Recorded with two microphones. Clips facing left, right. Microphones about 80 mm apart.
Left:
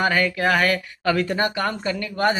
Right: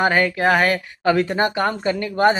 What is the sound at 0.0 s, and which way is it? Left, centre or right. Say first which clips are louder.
Speech: right 3 dB; right.